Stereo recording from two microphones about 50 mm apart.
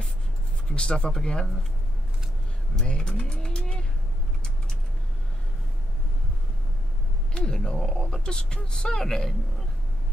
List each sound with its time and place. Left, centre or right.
0.7 s speech: centre
2.8 s speech: centre
3.3 s vehicle: centre
7.3 s speech: centre